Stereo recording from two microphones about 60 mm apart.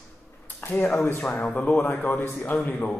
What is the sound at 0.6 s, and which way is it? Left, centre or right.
Speech, left.